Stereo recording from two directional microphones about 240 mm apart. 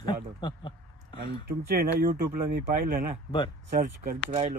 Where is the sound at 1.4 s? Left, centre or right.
Right.